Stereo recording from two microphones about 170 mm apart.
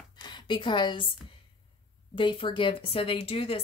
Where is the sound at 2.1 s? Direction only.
30° left (ahead or behind).